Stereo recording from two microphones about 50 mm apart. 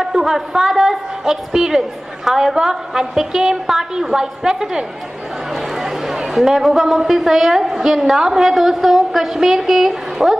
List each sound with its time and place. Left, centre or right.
0.0 s a woman's voice: centre